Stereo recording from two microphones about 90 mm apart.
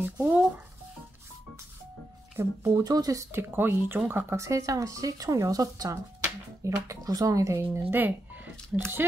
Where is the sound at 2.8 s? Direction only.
45° right (ahead or behind).